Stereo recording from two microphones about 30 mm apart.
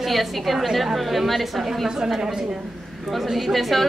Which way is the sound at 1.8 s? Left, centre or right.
Centre.